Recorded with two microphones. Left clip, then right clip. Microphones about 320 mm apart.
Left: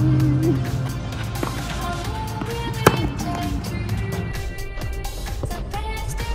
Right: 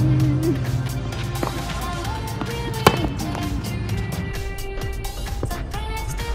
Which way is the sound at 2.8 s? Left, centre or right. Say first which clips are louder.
Right 1 dB; centre.